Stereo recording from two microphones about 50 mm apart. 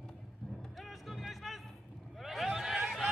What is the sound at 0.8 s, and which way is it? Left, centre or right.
Music, centre.